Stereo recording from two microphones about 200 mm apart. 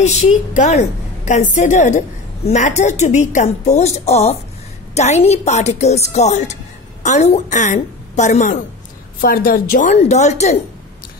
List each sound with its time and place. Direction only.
0.0 s a woman's voice: 35° left (ahead or behind)